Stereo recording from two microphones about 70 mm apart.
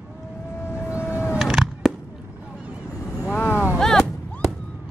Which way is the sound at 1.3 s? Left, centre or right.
Centre.